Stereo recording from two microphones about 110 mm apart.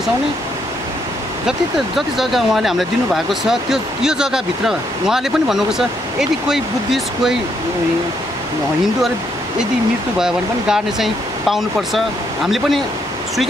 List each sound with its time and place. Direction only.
2.0 s speech: centre (ahead or behind)
10.1 s speech: 5° right (ahead or behind)